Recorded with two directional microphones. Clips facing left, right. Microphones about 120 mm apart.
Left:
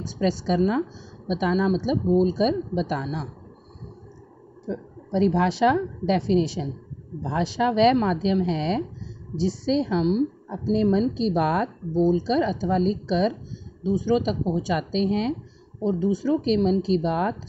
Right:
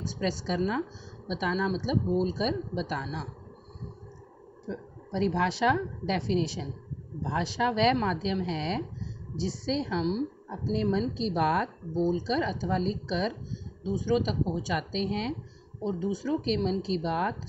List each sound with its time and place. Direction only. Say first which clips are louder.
0.2 s a woman's voice: left 7 dB; 25° left (ahead or behind)
4.6 s a woman's voice: left 6 dB; 25° left (ahead or behind)